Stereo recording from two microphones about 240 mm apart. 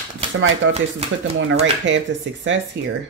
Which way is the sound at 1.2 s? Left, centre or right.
Right.